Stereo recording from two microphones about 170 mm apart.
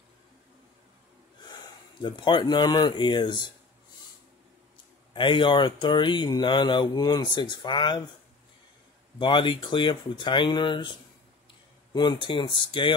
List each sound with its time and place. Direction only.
2.0 s speech: 25° left (ahead or behind)
5.1 s speech: 30° left (ahead or behind)
9.2 s speech: 30° left (ahead or behind)